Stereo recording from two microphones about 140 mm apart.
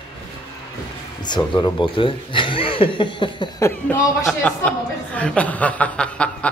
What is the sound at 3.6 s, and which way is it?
Speech, 15° left (ahead or behind).